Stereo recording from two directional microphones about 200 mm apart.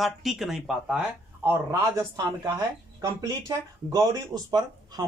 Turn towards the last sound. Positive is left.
turn(degrees=-20)  # may be behind; listen again after turning